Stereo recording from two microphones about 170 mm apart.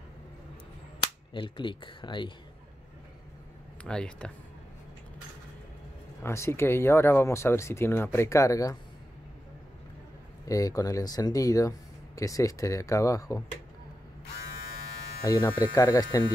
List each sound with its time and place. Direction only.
1.3 s speech: 30° left (ahead or behind)
3.8 s speech: 5° left (ahead or behind)
6.2 s speech: 15° left (ahead or behind)
10.5 s speech: 20° left (ahead or behind)
15.2 s speech: 20° left (ahead or behind)